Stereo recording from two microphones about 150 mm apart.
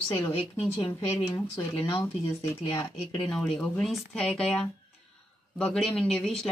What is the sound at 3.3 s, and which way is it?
Speech, 5° left (ahead or behind).